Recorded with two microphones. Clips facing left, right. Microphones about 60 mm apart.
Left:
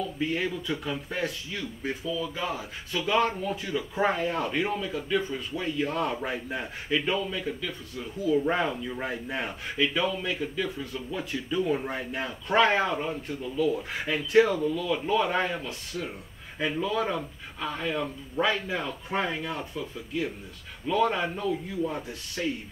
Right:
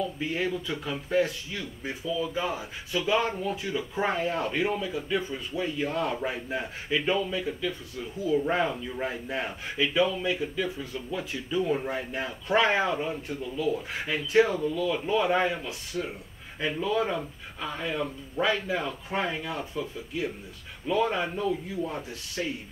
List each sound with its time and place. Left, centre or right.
0.2 s a man's voice: centre
2.1 s a man's voice: centre
14.5 s speech: right
14.8 s a man's voice: centre
20.8 s a man's voice: centre